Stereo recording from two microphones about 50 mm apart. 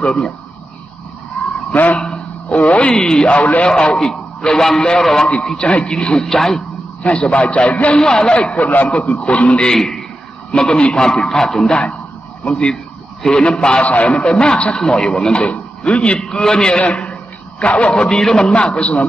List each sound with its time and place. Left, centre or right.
0.0 s a man's voice: centre
2.0 s a sound: centre
2.9 s a man's voice: centre
3.3 s a man's voice: left
3.6 s a man's voice: centre
7.2 s a man's voice: left
8.4 s a man's voice: left
8.6 s a man's voice: left
8.9 s a man's voice: left
12.6 s a sound: centre
13.5 s a man's voice: centre
18.5 s a man's voice: left